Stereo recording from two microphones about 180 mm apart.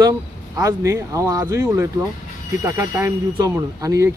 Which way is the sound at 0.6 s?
20° right (ahead or behind).